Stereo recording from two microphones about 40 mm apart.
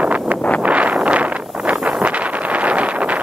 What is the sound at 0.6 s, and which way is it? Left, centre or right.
Wind noise, right.